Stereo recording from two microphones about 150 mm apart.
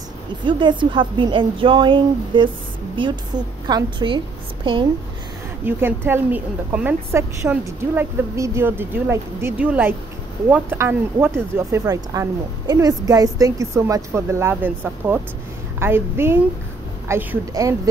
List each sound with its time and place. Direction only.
0.5 s a woman's voice: 30° right (ahead or behind)
5.7 s speech: 15° right (ahead or behind)